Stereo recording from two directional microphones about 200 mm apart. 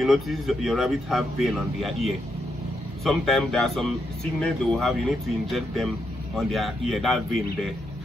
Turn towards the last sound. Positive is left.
turn(degrees=0)  # may be behind; listen again after turning